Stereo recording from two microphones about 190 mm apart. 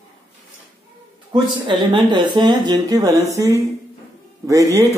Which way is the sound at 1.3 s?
25° right (ahead or behind).